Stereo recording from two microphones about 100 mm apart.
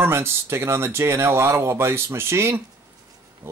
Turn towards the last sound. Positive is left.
turn(degrees=-25)  # may be behind; listen again after turning